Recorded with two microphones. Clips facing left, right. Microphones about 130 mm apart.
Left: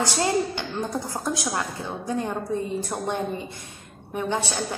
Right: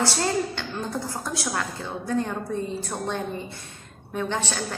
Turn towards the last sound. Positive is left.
turn(degrees=15)  # may be behind; listen again after turning